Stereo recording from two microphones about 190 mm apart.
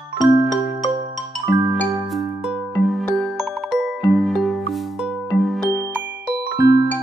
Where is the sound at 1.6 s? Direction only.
Centre (ahead or behind).